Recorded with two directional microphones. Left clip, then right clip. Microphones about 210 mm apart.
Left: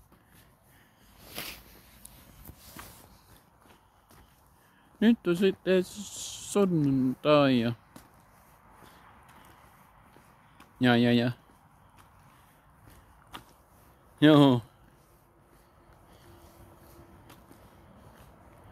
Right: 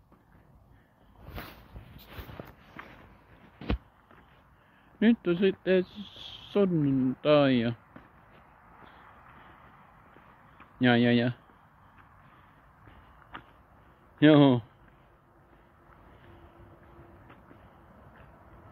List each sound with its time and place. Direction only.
4.9 s speech: 15° left (ahead or behind)
10.6 s speech: 15° left (ahead or behind)
14.2 s speech: 15° left (ahead or behind)